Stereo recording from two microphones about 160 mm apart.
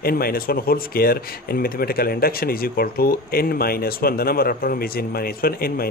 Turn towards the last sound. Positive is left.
turn(degrees=70)  # may be behind; listen again after turning